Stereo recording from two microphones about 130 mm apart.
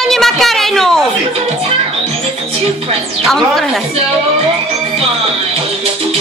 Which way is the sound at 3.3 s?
5° left (ahead or behind).